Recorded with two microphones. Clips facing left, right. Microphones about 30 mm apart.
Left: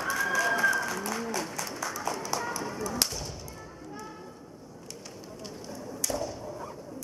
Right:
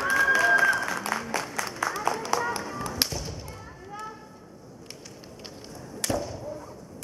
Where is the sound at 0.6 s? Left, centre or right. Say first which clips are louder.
Right 3 dB; right.